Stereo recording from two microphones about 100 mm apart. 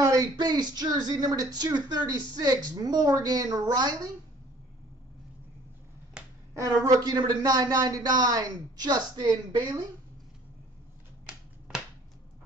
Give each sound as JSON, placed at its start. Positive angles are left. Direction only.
{"t": 0.4, "sound": "a woman's voice", "side_deg": -45}
{"t": 6.2, "sound": "finger snapping", "side_deg": -10}
{"t": 6.5, "sound": "a woman's voice", "side_deg": -35}
{"t": 11.2, "sound": "finger snapping", "side_deg": -15}